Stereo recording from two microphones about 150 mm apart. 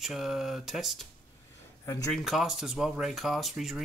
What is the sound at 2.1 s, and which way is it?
Speech, centre (ahead or behind).